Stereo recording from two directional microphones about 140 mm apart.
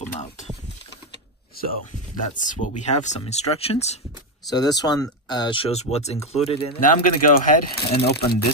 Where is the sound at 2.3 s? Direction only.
60° left (ahead or behind).